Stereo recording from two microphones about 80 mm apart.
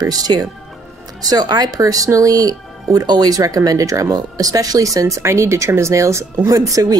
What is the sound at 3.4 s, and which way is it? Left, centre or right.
Speech, right.